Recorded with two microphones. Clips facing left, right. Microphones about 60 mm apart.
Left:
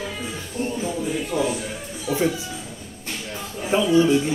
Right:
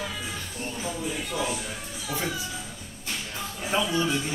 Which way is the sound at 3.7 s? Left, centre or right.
Centre.